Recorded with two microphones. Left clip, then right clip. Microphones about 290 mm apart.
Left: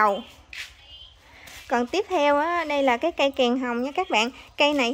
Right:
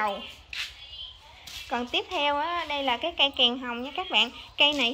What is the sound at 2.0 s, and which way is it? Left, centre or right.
A woman's voice, left.